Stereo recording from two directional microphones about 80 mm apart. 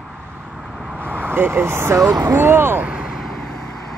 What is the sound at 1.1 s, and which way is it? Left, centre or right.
Speech, right.